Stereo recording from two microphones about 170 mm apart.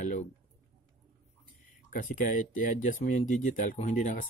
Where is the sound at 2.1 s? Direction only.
50° left (ahead or behind).